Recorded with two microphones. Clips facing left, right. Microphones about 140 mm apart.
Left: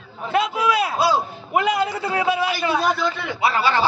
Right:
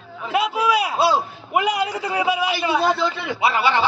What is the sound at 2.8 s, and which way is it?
A man's voice, 25° right (ahead or behind).